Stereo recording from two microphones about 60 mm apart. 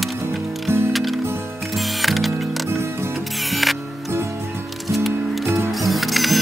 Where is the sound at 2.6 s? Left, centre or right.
Right.